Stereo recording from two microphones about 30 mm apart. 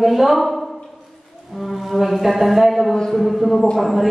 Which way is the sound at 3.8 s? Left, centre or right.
Centre.